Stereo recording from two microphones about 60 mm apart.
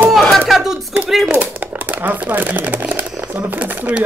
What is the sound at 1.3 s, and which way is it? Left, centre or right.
Speech, right.